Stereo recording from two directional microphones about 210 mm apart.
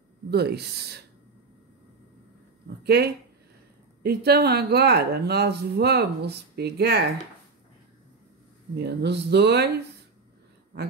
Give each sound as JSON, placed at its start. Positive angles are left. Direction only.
{"t": 0.3, "sound": "speech", "side_deg": -50}
{"t": 2.8, "sound": "speech", "side_deg": -50}
{"t": 8.7, "sound": "speech", "side_deg": -50}